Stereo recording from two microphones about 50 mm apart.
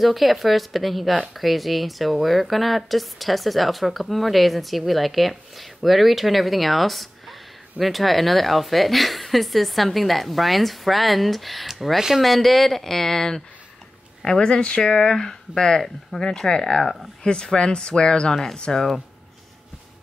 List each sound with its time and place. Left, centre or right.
0.0 s speech: centre
16.3 s speech: centre
16.8 s speech: centre
17.2 s speech: centre